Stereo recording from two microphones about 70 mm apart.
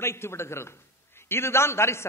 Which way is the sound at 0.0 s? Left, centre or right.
Left.